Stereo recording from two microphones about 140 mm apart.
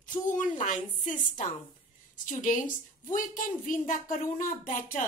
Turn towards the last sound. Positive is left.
turn(degrees=70)  # may be behind; listen again after turning